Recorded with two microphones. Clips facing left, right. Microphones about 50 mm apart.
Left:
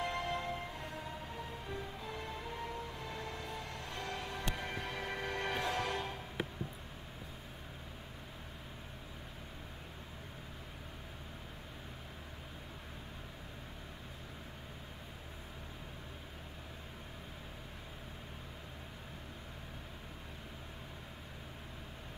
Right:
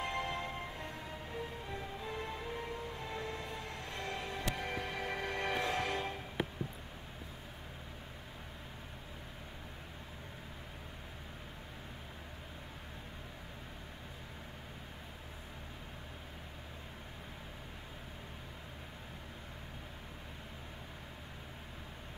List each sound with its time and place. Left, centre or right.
0.0 s music: right
1.7 s music: right
4.7 s music: centre
5.1 s music: right